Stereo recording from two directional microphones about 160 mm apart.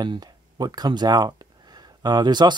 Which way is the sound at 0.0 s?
25° right (ahead or behind).